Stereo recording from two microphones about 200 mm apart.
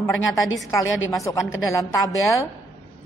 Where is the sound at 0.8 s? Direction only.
75° left (ahead or behind).